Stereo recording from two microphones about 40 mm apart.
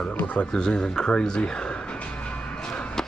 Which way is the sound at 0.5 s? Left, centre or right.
Left.